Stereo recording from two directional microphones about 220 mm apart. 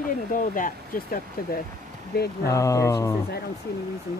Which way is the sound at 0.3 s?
35° left (ahead or behind).